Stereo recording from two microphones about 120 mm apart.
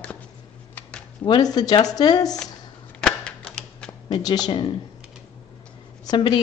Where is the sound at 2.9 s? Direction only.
5° left (ahead or behind).